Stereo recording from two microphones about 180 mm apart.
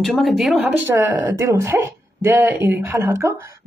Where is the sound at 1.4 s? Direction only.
15° right (ahead or behind).